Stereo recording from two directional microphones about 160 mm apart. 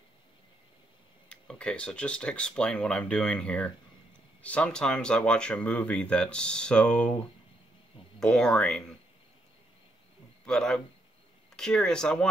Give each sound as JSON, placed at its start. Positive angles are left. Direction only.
{"t": 1.3, "sound": "speech", "side_deg": 5}
{"t": 8.2, "sound": "speech", "side_deg": 5}
{"t": 10.4, "sound": "speech", "side_deg": 5}